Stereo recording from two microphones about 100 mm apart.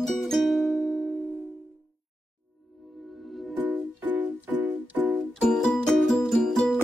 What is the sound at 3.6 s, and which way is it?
Music, 15° right (ahead or behind).